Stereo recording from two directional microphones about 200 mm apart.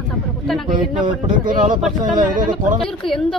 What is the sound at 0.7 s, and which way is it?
A man's voice, 40° right (ahead or behind).